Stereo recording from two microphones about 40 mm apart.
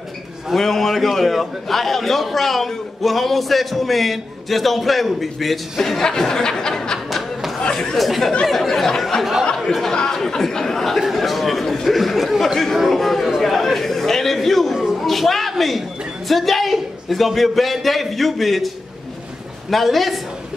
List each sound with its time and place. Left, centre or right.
0.6 s a man's voice: centre
7.1 s chatter: centre
7.6 s chatter: centre
8.0 s a man's voice: centre
11.0 s a sound: centre
12.9 s chatter: centre
15.0 s a man's voice: centre
19.7 s a man's voice: centre